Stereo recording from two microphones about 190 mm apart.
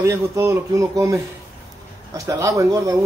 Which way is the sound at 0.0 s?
15° right (ahead or behind).